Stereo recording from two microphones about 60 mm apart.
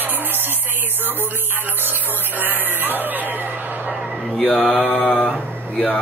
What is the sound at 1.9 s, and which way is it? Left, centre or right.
Speech, right.